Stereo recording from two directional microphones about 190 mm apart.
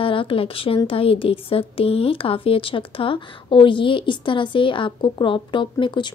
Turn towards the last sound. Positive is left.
turn(degrees=25)  # may be behind; listen again after turning